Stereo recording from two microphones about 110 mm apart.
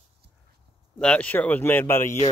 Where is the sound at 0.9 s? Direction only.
10° left (ahead or behind).